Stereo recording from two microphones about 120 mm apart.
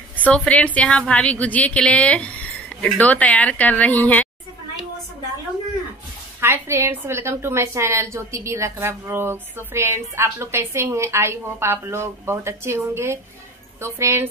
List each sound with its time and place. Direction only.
0.3 s a woman's voice: 10° left (ahead or behind)
6.4 s a woman's voice: 20° right (ahead or behind)